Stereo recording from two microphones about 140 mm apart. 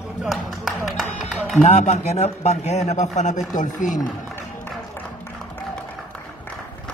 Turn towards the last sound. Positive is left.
turn(degrees=10)  # may be behind; listen again after turning